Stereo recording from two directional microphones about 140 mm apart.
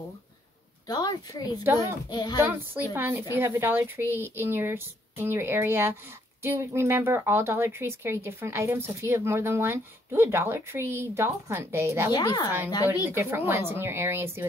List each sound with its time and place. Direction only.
0.8 s a woman's voice: 30° left (ahead or behind)
1.6 s speech: 20° right (ahead or behind)
2.0 s a woman's voice: 30° left (ahead or behind)
2.4 s speech: 15° right (ahead or behind)
12.1 s a woman's voice: 25° left (ahead or behind)
12.4 s speech: 15° right (ahead or behind)